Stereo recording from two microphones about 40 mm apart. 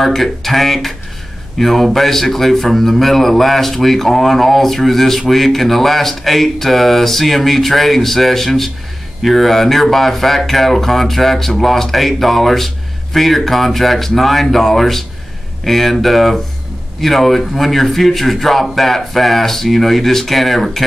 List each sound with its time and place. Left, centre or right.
0.0 s a man's voice: centre